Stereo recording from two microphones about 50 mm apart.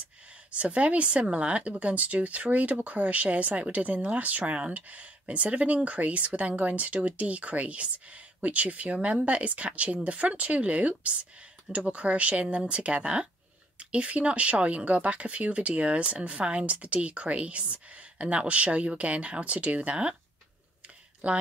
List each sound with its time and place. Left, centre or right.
0.0 s speech: right
21.2 s speech: right